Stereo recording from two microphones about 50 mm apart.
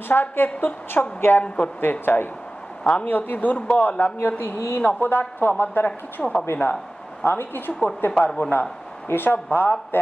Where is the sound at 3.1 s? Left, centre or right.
Left.